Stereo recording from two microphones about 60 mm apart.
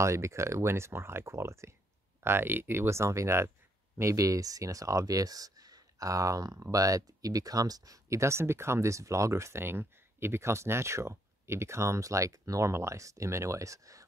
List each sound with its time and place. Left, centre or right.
0.0 s speech: right
2.2 s speech: right
4.0 s speech: right
8.2 s speech: right